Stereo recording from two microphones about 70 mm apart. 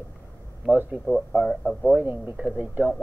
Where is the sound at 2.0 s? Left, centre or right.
Right.